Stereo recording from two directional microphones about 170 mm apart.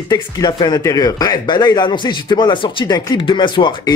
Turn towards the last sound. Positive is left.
turn(degrees=30)  # may be behind; listen again after turning